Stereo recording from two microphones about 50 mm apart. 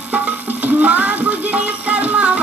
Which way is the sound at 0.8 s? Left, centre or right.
Right.